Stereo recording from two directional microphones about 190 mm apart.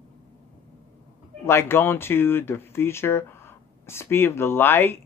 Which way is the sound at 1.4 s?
15° left (ahead or behind).